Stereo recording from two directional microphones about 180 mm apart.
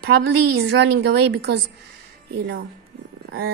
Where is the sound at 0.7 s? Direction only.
70° right (ahead or behind).